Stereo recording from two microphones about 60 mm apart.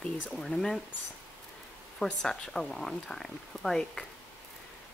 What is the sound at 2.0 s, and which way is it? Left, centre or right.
Speech, centre.